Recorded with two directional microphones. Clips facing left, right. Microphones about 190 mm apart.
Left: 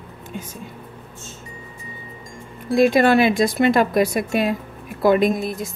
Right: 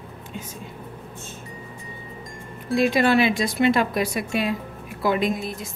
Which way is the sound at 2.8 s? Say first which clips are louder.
Left 4 dB; 45° left (ahead or behind).